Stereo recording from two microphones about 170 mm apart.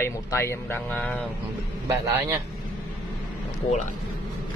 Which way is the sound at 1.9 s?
15° right (ahead or behind).